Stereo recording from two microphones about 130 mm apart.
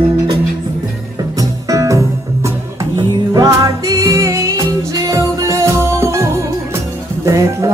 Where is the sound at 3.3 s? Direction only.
30° right (ahead or behind).